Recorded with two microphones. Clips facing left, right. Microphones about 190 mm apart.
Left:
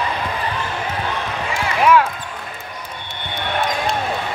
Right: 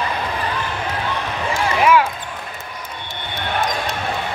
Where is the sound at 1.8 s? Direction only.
Centre (ahead or behind).